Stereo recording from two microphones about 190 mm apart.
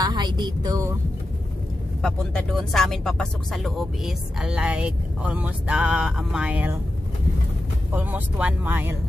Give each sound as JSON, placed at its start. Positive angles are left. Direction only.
{"t": 0.0, "sound": "a woman's voice", "side_deg": -20}
{"t": 2.0, "sound": "speech", "side_deg": 0}
{"t": 7.9, "sound": "speech", "side_deg": -10}